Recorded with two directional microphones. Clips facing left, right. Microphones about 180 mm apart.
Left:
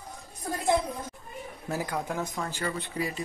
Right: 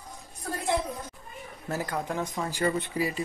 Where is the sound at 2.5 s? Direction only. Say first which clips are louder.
Right 5 dB; 20° right (ahead or behind).